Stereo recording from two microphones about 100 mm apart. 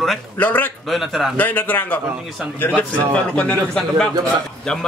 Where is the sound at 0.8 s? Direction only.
Centre (ahead or behind).